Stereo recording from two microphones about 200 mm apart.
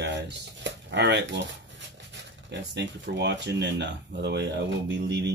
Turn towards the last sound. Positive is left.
turn(degrees=-60)  # may be behind; listen again after turning